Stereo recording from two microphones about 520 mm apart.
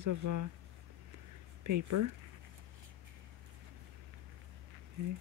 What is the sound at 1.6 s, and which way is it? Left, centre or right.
Speech, right.